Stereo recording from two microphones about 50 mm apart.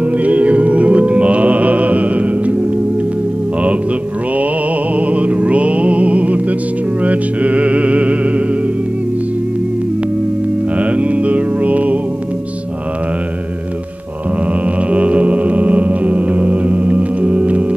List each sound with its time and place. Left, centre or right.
0.0 s music: right
4.9 s music: right
10.8 s music: right
14.8 s music: right